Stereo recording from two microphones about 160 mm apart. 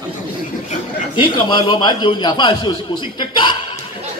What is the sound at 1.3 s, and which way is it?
A man's voice, 25° left (ahead or behind).